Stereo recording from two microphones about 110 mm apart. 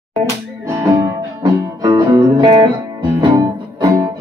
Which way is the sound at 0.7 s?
30° right (ahead or behind).